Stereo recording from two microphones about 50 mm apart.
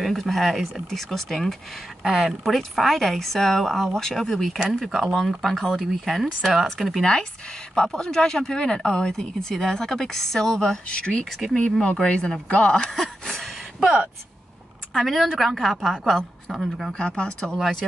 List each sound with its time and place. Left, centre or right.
0.0 s a woman's voice: centre
7.0 s speech: centre
15.0 s a woman's voice: centre
16.1 s a woman's voice: centre
16.5 s a woman's voice: centre
16.9 s speech: centre